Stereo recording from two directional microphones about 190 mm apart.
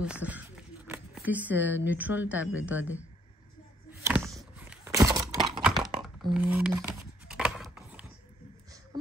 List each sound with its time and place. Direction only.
0.0 s speech: 5° right (ahead or behind)
4.0 s a sound: 15° right (ahead or behind)
5.6 s computer keyboard: centre (ahead or behind)
6.3 s scissors: 5° right (ahead or behind)